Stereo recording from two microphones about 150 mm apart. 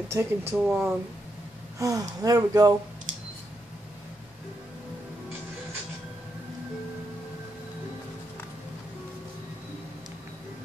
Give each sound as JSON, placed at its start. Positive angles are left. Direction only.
{"t": 0.1, "sound": "speech", "side_deg": -15}
{"t": 1.8, "sound": "speech", "side_deg": -20}